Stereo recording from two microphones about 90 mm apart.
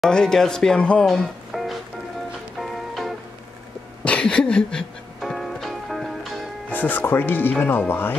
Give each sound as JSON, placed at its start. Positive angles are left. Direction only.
{"t": 0.0, "sound": "speech", "side_deg": 5}
{"t": 1.0, "sound": "music", "side_deg": 0}
{"t": 4.0, "sound": "music", "side_deg": 10}
{"t": 6.7, "sound": "speech", "side_deg": 20}